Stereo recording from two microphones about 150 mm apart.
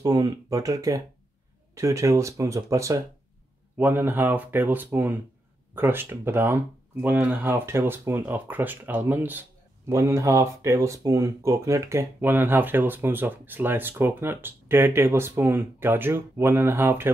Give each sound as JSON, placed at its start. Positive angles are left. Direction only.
{"t": 0.0, "sound": "speech", "side_deg": -25}